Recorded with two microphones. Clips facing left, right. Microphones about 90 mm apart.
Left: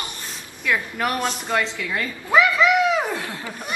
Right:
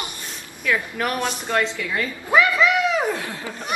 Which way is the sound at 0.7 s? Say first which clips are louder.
Even; 5° left (ahead or behind).